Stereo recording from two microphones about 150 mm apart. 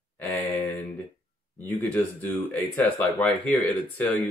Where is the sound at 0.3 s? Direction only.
10° left (ahead or behind).